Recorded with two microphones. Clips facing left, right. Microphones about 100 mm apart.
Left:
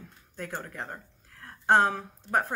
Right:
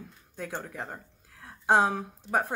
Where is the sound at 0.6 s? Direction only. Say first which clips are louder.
Even; 10° right (ahead or behind).